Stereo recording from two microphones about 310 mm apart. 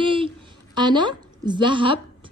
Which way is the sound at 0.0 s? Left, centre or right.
Centre.